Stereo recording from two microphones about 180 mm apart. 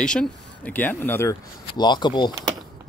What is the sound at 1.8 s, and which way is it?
Speech, 25° left (ahead or behind).